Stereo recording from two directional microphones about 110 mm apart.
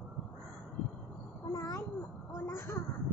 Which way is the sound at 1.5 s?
30° left (ahead or behind).